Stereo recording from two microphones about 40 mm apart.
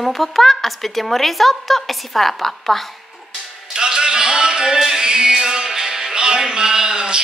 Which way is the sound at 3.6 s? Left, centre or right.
Centre.